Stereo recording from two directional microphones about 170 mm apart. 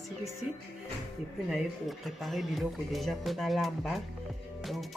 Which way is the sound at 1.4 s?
Centre (ahead or behind).